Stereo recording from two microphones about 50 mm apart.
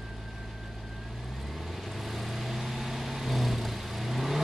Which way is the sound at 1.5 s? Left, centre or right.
Centre.